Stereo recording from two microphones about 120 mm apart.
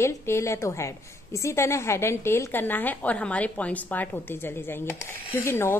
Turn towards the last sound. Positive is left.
turn(degrees=20)  # may be behind; listen again after turning